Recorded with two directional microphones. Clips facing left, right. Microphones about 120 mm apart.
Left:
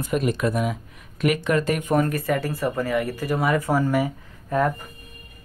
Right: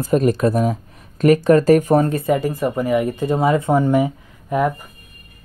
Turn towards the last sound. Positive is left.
turn(degrees=-15)  # may be behind; listen again after turning